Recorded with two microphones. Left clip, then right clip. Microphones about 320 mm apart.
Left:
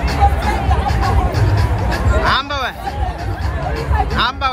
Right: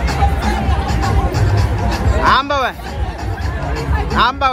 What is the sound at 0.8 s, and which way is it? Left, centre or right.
Music, centre.